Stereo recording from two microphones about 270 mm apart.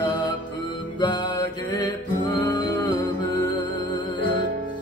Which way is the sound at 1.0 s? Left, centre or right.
Centre.